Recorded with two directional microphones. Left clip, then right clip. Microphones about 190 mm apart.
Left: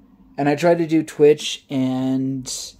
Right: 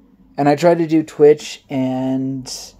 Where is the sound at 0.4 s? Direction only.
15° right (ahead or behind).